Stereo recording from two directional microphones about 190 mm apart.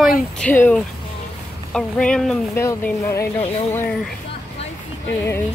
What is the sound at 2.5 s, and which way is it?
Speech, 15° left (ahead or behind).